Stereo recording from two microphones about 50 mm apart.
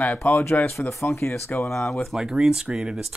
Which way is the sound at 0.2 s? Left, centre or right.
Left.